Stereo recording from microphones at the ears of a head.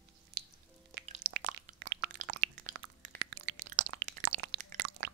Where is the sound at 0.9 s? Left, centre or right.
Right.